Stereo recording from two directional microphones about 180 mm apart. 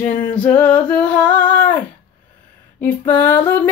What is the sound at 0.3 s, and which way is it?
Female singing, 5° left (ahead or behind).